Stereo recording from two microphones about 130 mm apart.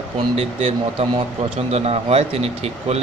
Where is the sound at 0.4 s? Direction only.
50° right (ahead or behind).